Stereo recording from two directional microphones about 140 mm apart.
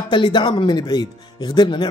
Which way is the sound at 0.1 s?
35° left (ahead or behind).